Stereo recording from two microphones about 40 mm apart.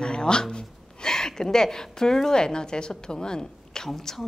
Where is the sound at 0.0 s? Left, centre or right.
Left.